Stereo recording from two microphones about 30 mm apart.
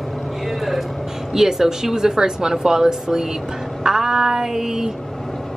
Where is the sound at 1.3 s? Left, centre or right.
Centre.